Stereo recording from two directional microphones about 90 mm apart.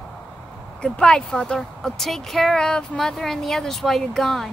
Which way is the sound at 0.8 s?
10° left (ahead or behind).